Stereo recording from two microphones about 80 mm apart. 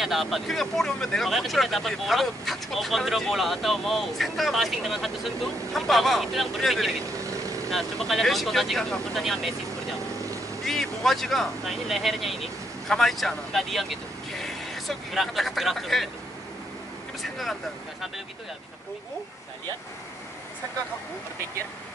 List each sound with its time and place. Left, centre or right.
0.0 s speech: centre
10.6 s speech: centre
17.2 s speech: centre